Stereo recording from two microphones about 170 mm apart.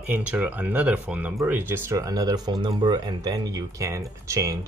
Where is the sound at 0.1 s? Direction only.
10° right (ahead or behind).